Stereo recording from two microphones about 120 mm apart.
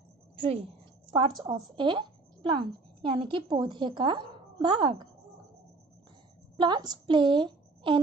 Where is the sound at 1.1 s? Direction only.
40° right (ahead or behind).